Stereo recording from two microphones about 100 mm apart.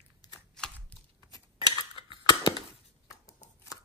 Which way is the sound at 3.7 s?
35° left (ahead or behind).